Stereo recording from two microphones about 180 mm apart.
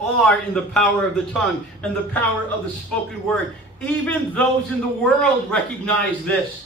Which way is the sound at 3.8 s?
10° left (ahead or behind).